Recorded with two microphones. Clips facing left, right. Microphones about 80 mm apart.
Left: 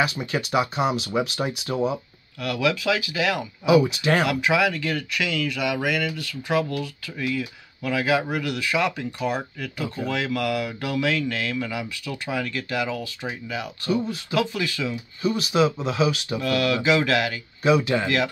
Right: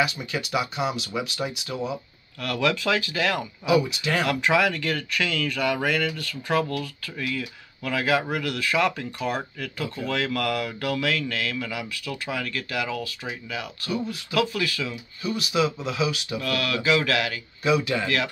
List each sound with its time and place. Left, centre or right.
0.1 s speech: left
2.4 s speech: centre
3.8 s speech: left
4.2 s speech: centre; by 18.3 s left